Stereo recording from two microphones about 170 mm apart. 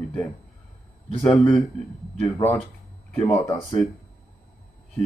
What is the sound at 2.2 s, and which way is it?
Speech, 15° left (ahead or behind).